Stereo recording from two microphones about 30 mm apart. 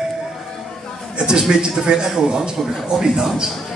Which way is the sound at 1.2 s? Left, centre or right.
Right.